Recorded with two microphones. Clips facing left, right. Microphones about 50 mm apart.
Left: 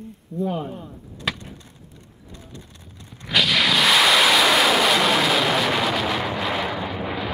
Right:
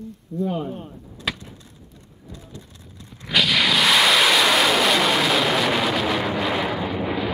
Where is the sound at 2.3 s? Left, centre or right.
Left.